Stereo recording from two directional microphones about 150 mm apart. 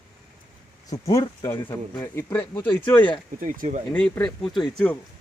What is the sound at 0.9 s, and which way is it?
Speech, 20° left (ahead or behind).